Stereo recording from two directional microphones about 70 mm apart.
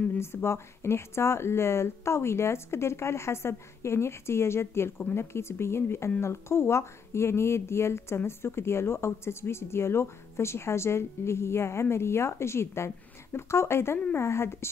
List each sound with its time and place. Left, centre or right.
0.2 s speech: left